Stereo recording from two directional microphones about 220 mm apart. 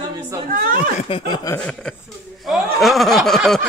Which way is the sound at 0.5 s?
40° right (ahead or behind).